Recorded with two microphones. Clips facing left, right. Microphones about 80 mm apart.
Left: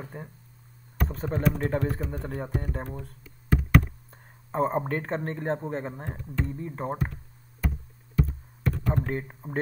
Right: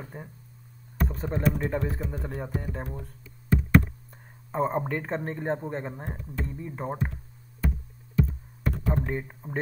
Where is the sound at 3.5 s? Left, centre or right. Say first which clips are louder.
Right 1 dB; left.